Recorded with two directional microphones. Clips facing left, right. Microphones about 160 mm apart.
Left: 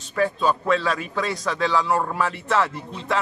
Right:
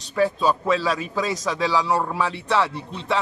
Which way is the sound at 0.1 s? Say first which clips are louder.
Right 1 dB; centre (ahead or behind).